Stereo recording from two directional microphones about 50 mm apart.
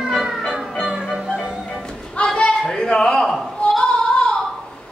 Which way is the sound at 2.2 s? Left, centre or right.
Left.